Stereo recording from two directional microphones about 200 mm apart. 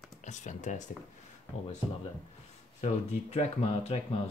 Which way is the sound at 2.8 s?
35° left (ahead or behind).